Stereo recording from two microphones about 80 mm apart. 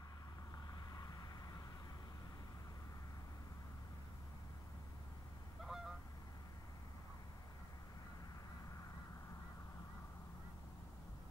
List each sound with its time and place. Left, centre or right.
0.9 s vehicle: left
5.6 s goose: centre